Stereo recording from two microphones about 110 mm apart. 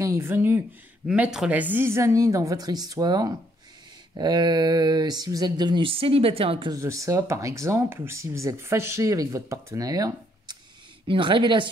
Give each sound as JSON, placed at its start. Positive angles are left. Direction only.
{"t": 0.0, "sound": "speech", "side_deg": -25}
{"t": 4.2, "sound": "a sound", "side_deg": -40}
{"t": 6.7, "sound": "speech", "side_deg": -30}
{"t": 11.1, "sound": "speech", "side_deg": -50}